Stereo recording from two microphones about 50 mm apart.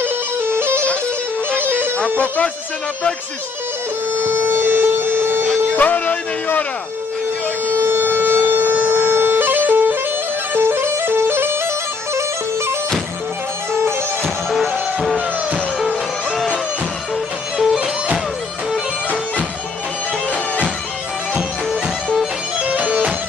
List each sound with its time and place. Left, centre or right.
0.0 s bagpipes: right
1.6 s music: right
2.1 s music: left
4.2 s music: right
5.8 s music: left
7.6 s siren: right
10.5 s music: right
22.6 s music: right